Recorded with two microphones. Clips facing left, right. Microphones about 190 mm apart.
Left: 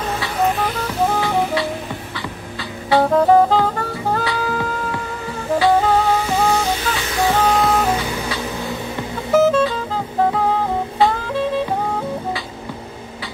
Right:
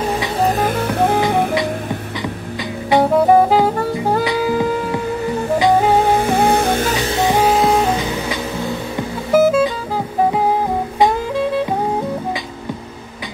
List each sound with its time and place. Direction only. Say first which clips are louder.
0.4 s music: right 2 dB; 40° right (ahead or behind); by 1.2 s 60° right (ahead or behind)
2.9 s music: right 1 dB; 15° right (ahead or behind)
6.1 s music: right 3 dB; 55° right (ahead or behind)
7.1 s printer: left 1 dB; 25° right (ahead or behind)
7.3 s music: right 3 dB; 5° right (ahead or behind)
9.3 s music: right 2 dB; 10° right (ahead or behind)
11.0 s jazz: right 2 dB; 10° right (ahead or behind)